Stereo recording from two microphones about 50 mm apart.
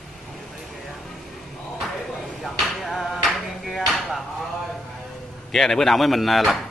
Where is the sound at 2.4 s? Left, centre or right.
Centre.